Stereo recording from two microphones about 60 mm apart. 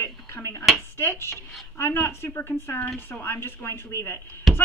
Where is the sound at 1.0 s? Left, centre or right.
Left.